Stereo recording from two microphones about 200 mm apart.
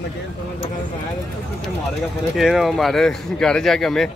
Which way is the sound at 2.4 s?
Centre (ahead or behind).